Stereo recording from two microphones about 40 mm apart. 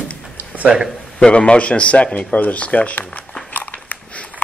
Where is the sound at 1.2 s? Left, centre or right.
Left.